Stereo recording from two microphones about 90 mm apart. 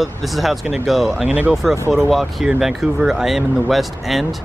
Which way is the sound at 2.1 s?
Centre (ahead or behind).